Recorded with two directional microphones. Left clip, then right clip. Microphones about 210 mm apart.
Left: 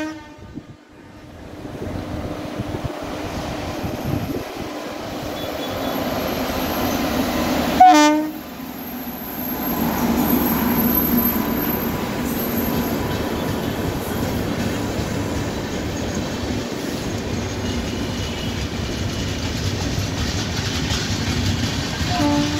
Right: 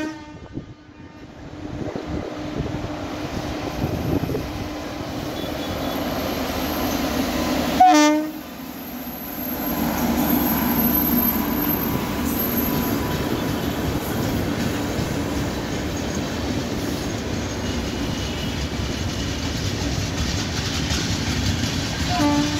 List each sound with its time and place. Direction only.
5.5 s vehicle: centre (ahead or behind)
7.8 s train: 25° right (ahead or behind)
9.8 s vehicle: 40° right (ahead or behind)
22.1 s train: 25° right (ahead or behind)